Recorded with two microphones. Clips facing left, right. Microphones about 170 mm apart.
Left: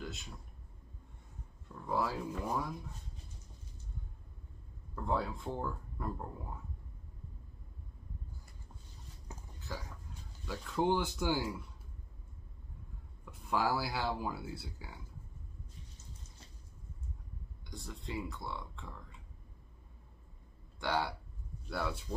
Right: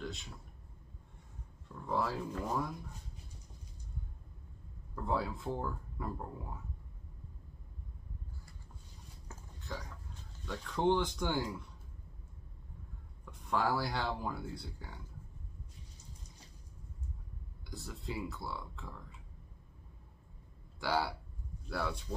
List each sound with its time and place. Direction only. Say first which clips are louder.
0.0 s speech: right 2 dB; centre (ahead or behind)
1.9 s speech: even; centre (ahead or behind)
4.9 s speech: even; centre (ahead or behind)
9.3 s a sound: left 2 dB; 15° left (ahead or behind)
10.4 s speech: right 1 dB; 5° left (ahead or behind)
13.2 s speech: even; 5° left (ahead or behind)
17.6 s speech: right 1 dB; centre (ahead or behind)
20.8 s speech: right 1 dB; 5° right (ahead or behind)